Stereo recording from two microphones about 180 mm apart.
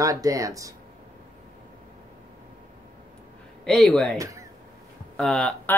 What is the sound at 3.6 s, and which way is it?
Speech, 5° left (ahead or behind).